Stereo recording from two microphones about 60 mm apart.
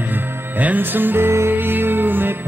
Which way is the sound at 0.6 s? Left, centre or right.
Right.